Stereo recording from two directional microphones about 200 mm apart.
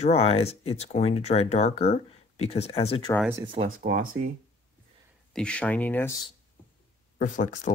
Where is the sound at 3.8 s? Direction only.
45° right (ahead or behind).